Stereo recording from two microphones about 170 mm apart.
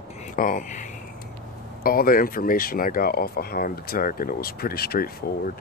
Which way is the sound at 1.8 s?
60° left (ahead or behind).